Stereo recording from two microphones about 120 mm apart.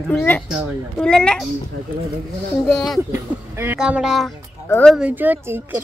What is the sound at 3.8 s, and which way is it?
Speech, 5° right (ahead or behind).